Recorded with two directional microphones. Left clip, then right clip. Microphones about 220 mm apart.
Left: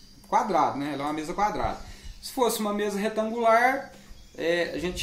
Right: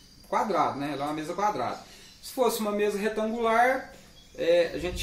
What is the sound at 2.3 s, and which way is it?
Speech, 35° left (ahead or behind).